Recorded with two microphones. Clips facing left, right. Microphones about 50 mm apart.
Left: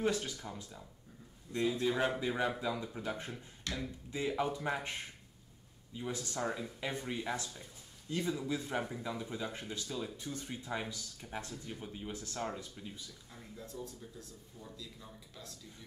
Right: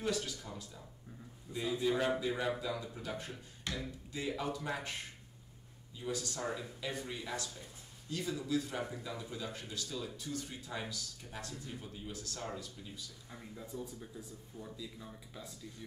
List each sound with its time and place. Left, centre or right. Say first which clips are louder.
0.0 s speech: left 3 dB; left
1.7 s speech: right 2 dB; centre
5.9 s speech: left 1 dB; left
13.3 s speech: right 3 dB; centre